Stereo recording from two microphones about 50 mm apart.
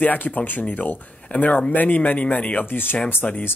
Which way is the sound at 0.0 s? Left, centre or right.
Left.